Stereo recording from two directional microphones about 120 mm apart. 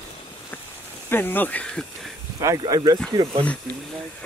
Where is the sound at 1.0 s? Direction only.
15° left (ahead or behind).